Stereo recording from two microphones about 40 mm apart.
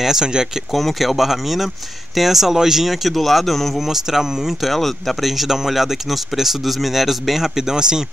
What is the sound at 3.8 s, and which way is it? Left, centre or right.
Speech, centre.